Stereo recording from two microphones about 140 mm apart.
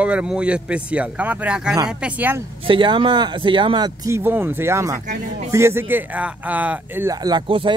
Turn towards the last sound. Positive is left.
turn(degrees=-40)  # may be behind; listen again after turning